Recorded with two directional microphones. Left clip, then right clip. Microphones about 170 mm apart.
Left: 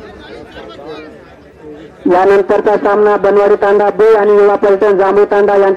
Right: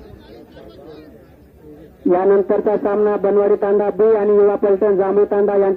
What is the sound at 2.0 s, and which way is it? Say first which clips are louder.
A man's voice: left 6 dB; 30° right (ahead or behind).